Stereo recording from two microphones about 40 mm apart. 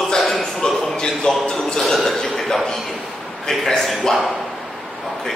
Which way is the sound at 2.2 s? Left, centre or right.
Centre.